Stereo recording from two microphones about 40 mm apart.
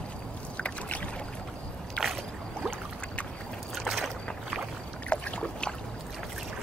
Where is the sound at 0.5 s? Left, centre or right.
Left.